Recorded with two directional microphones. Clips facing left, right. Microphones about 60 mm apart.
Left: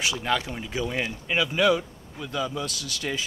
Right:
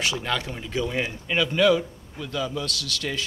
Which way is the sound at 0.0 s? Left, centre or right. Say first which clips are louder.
Left 1 dB; centre.